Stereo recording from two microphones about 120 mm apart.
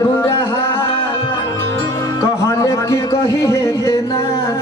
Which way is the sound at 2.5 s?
25° left (ahead or behind).